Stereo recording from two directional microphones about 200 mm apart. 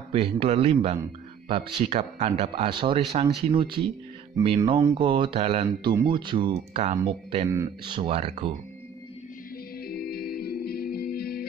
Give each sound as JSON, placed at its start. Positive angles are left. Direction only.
{"t": 0.1, "sound": "speech", "side_deg": -30}
{"t": 7.4, "sound": "speech", "side_deg": -15}
{"t": 9.8, "sound": "music", "side_deg": 50}